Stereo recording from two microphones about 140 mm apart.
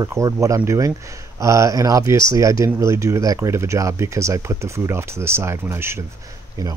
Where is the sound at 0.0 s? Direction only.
20° right (ahead or behind).